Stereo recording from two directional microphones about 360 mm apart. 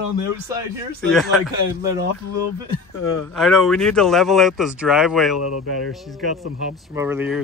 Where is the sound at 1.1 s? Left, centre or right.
Centre.